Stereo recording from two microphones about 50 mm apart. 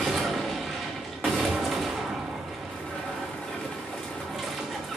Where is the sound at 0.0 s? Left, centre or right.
Centre.